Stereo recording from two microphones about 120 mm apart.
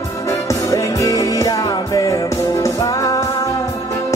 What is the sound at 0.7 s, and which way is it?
Music, 25° left (ahead or behind).